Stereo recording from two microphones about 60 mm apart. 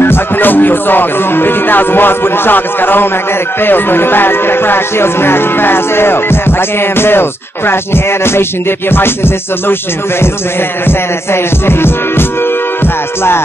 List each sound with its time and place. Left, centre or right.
0.0 s music: left
10.9 s music: left